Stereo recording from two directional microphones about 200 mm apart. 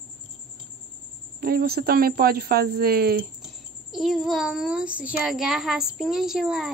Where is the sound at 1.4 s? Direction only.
50° right (ahead or behind).